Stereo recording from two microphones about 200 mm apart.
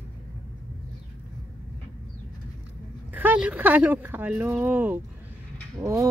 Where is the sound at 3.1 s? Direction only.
10° right (ahead or behind).